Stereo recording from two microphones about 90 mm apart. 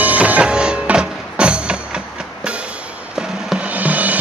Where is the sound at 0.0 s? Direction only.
15° right (ahead or behind).